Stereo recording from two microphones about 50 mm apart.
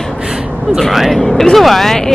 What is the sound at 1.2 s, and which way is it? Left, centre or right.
Speech, centre.